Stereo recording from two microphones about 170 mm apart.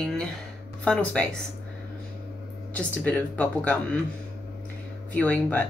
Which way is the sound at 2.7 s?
10° left (ahead or behind).